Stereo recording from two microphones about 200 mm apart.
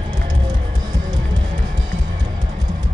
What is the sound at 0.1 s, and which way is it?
Music, 20° right (ahead or behind).